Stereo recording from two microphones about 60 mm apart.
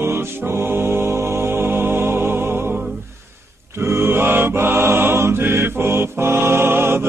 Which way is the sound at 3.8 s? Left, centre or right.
Right.